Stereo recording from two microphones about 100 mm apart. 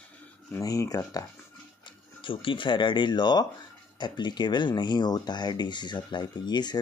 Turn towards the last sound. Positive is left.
turn(degrees=45)  # may be behind; listen again after turning